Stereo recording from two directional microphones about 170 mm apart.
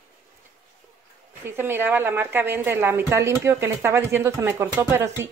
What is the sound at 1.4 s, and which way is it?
A woman's voice, 15° right (ahead or behind).